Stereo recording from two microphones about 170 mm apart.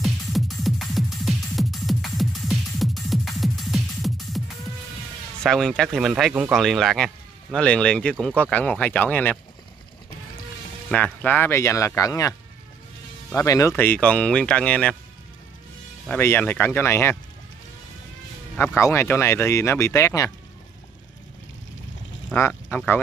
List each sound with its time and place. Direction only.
0.0 s music: centre (ahead or behind)
5.4 s speech: 5° left (ahead or behind)
10.9 s speech: 10° left (ahead or behind)
16.1 s speech: 10° left (ahead or behind)
18.8 s speech: 15° left (ahead or behind)
22.3 s speech: 10° left (ahead or behind)